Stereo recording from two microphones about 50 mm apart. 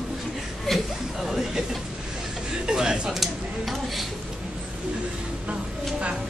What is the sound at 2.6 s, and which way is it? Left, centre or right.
Speech, centre.